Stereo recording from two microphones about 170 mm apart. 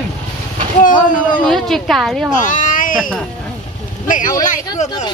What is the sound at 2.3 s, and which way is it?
Speech, 50° left (ahead or behind).